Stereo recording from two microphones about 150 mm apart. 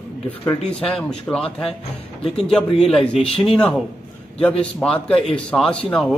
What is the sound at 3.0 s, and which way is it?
Speech, 40° left (ahead or behind).